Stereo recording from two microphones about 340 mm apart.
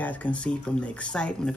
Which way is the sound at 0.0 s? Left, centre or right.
Centre.